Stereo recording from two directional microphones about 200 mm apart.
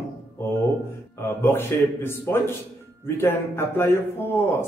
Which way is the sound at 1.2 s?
10° left (ahead or behind).